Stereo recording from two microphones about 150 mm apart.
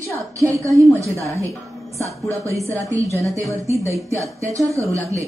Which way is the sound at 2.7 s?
20° right (ahead or behind).